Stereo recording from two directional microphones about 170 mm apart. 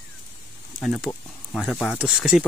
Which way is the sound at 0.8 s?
5° left (ahead or behind).